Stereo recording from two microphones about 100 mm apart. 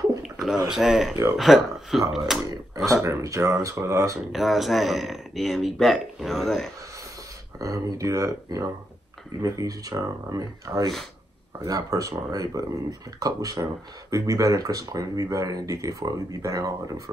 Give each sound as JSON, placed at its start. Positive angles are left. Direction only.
{"t": 0.7, "sound": "speech", "side_deg": -5}
{"t": 2.5, "sound": "speech", "side_deg": -35}
{"t": 4.3, "sound": "speech", "side_deg": 0}
{"t": 7.5, "sound": "speech", "side_deg": -35}